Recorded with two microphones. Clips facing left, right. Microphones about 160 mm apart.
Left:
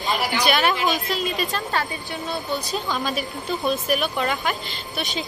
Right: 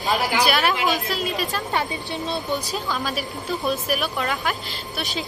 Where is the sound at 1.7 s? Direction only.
20° right (ahead or behind).